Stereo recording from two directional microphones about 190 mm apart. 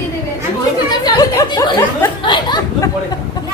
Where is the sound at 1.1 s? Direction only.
20° left (ahead or behind).